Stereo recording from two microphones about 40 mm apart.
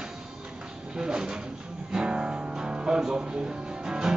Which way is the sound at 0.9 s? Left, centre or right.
Centre.